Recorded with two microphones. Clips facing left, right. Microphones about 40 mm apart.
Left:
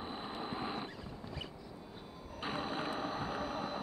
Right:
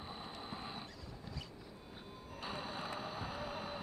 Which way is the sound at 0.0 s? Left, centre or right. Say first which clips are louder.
Left 6 dB; left.